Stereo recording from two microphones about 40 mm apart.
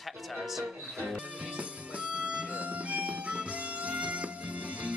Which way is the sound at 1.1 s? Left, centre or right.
Right.